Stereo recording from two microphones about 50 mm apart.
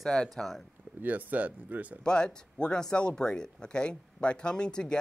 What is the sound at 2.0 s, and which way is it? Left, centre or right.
Speech, centre.